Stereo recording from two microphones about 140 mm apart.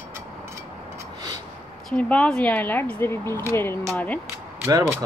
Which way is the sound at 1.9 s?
10° left (ahead or behind).